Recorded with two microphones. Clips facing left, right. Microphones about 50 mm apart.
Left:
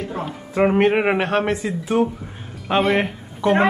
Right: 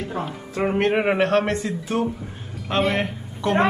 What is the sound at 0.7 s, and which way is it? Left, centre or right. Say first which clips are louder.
A woman's voice: left 2 dB; centre.